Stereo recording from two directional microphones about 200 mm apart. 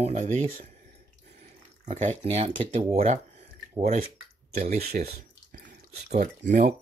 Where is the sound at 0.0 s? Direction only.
35° right (ahead or behind).